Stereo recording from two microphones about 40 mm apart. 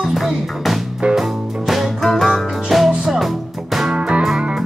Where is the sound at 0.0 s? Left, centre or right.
Centre.